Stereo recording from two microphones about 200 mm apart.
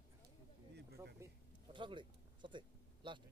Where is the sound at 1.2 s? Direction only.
25° right (ahead or behind).